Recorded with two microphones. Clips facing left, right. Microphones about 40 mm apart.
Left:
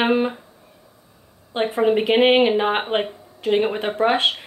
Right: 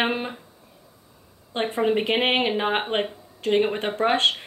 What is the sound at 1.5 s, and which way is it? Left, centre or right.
Speech, centre.